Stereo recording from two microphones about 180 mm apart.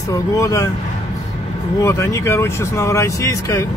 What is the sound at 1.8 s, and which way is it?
Speech, 15° left (ahead or behind).